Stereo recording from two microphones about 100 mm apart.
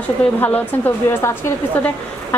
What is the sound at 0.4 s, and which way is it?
A woman's voice, 20° left (ahead or behind).